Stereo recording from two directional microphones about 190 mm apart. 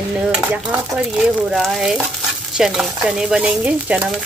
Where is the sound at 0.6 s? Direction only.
5° right (ahead or behind).